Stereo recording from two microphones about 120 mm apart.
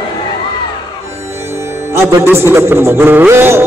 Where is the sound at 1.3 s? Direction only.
20° right (ahead or behind).